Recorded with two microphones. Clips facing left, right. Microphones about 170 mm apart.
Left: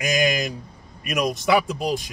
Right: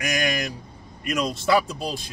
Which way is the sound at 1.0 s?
15° left (ahead or behind).